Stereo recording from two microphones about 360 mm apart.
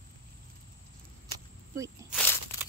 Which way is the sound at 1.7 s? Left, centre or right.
Centre.